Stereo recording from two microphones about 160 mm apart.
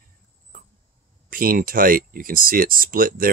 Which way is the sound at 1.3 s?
60° right (ahead or behind).